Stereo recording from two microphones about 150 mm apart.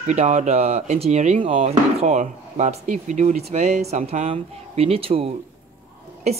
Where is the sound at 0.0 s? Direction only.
50° right (ahead or behind).